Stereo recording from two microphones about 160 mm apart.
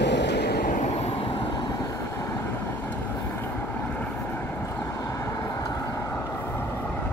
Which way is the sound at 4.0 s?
15° left (ahead or behind).